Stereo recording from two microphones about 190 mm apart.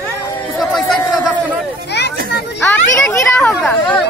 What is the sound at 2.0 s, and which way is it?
Children playing, 65° left (ahead or behind).